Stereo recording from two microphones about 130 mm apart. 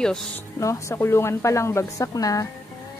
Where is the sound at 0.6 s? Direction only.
20° left (ahead or behind).